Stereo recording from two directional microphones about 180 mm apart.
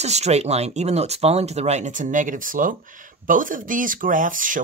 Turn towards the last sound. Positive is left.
turn(degrees=-45)  # may be behind; listen again after turning